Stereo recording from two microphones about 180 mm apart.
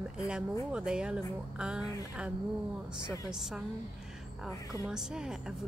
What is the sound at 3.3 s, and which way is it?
Speech, 5° right (ahead or behind).